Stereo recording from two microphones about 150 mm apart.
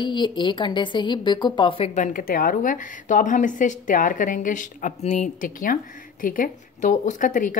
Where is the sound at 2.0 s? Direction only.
70° left (ahead or behind).